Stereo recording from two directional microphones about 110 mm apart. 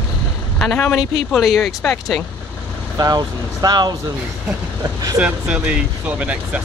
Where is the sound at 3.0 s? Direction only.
40° right (ahead or behind).